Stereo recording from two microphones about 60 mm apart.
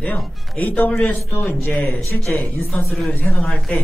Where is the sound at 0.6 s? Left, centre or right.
Left.